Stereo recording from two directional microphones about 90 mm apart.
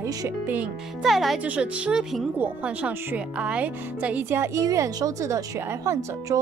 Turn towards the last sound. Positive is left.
turn(degrees=-35)  # may be behind; listen again after turning